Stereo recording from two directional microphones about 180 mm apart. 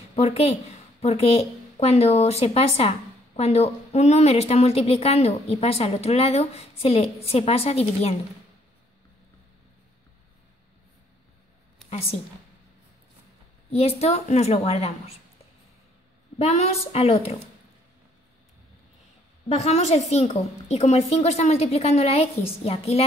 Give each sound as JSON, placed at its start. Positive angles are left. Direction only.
{"t": 0.1, "sound": "a woman's voice", "side_deg": 35}
{"t": 13.7, "sound": "a woman's voice", "side_deg": 35}
{"t": 16.3, "sound": "a woman's voice", "side_deg": 35}
{"t": 19.5, "sound": "a woman's voice", "side_deg": 35}